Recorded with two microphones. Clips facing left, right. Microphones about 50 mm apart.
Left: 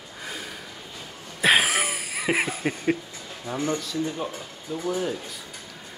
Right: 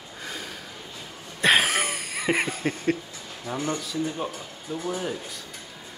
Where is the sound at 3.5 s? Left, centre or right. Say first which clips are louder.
Even; right.